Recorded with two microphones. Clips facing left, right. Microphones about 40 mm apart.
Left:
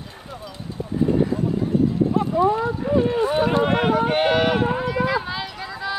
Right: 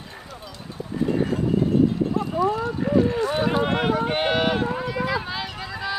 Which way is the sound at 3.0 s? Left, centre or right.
Left.